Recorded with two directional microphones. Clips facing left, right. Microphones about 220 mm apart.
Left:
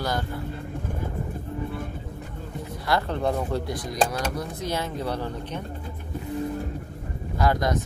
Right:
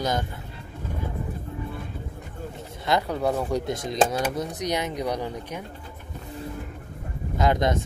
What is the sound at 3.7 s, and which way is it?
Speech, 25° right (ahead or behind).